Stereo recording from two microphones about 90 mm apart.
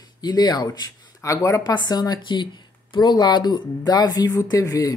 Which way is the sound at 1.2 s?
40° left (ahead or behind).